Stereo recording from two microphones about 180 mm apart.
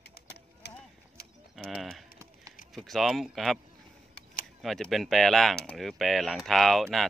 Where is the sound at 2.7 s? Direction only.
Centre (ahead or behind).